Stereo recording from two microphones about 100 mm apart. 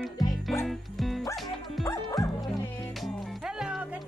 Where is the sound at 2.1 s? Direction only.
35° left (ahead or behind).